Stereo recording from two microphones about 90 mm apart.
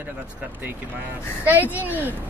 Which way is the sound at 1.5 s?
20° right (ahead or behind).